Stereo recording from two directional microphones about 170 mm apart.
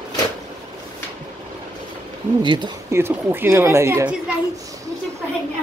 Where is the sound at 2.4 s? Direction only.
25° right (ahead or behind).